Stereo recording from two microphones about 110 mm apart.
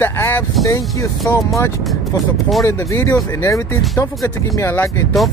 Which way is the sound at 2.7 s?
25° left (ahead or behind).